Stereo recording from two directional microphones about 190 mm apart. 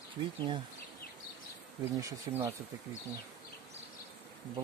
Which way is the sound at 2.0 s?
15° right (ahead or behind).